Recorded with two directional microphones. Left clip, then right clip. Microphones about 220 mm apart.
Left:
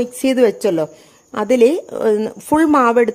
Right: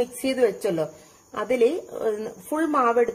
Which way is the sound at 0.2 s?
45° left (ahead or behind).